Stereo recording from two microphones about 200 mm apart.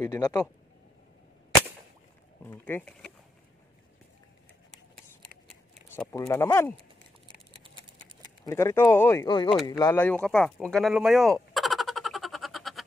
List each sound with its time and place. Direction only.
0.0 s speech: 15° left (ahead or behind)
2.4 s speech: 10° left (ahead or behind)
6.1 s speech: 15° left (ahead or behind)
7.2 s a sound: 25° right (ahead or behind)
8.5 s speech: 15° left (ahead or behind)
9.7 s a sound: 15° left (ahead or behind); by 12.8 s centre (ahead or behind)